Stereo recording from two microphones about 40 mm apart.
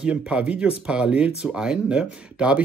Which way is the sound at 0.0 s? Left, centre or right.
Right.